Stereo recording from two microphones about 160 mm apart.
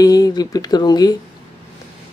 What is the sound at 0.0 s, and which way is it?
Speech, 25° left (ahead or behind).